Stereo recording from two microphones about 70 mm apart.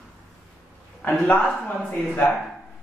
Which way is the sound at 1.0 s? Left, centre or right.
Centre.